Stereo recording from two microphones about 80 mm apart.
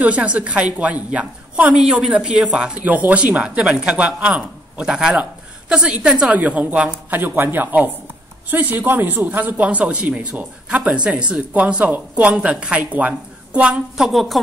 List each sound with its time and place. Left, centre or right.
0.0 s a man's voice: centre